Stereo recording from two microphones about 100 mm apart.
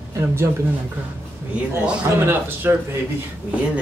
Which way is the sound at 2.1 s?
25° right (ahead or behind).